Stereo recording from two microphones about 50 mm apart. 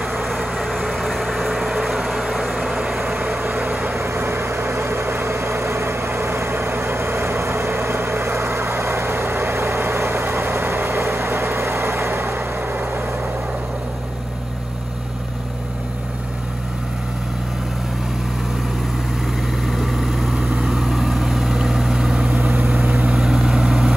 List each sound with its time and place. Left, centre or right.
0.0 s vehicle: centre
3.3 s vehicle: right
3.9 s vehicle: right
12.5 s vehicle: right
19.6 s vehicle: centre
20.3 s vehicle: centre
20.8 s vehicle: centre
22.3 s vehicle: right
23.1 s vehicle: centre